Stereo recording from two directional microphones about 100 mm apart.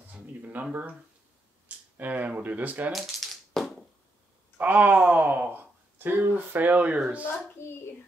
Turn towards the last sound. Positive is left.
turn(degrees=25)  # may be behind; listen again after turning